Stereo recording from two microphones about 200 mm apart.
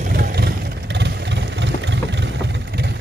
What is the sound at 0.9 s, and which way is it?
Vehicle, 60° right (ahead or behind).